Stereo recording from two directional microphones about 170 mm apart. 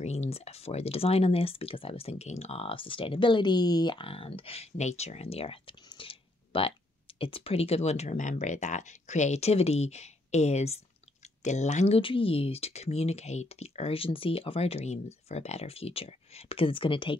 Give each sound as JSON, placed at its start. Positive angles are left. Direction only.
{"t": 0.0, "sound": "speech", "side_deg": 40}